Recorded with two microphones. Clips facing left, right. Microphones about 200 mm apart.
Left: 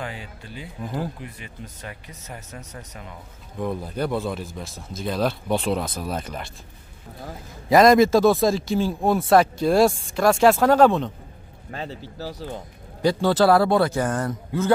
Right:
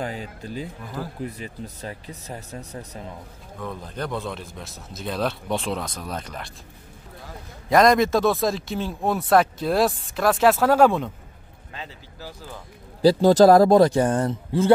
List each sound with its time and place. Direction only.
0.0 s speech: 40° right (ahead or behind)
3.6 s speech: 10° left (ahead or behind)
7.7 s speech: centre (ahead or behind)
11.7 s speech: 40° left (ahead or behind)
13.0 s speech: 35° right (ahead or behind)